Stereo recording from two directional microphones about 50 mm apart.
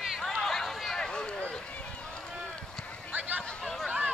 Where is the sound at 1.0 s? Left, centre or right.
Centre.